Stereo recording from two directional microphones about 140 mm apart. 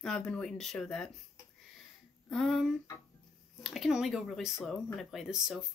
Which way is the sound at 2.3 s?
Centre (ahead or behind).